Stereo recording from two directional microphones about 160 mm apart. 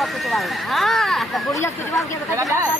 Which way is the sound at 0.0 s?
Centre (ahead or behind).